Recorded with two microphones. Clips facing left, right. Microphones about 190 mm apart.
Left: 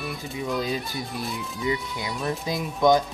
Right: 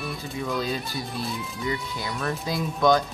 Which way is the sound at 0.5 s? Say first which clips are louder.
Left 2 dB; 15° left (ahead or behind).